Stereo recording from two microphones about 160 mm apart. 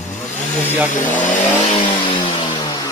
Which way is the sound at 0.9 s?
50° left (ahead or behind).